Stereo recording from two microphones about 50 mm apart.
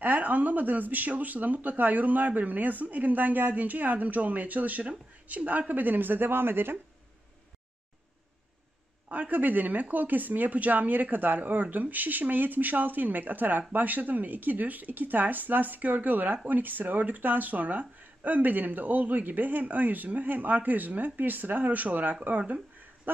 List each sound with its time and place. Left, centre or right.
0.0 s speech: right
9.1 s speech: right